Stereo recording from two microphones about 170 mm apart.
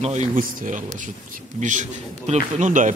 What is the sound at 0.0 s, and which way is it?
Speech, 45° right (ahead or behind).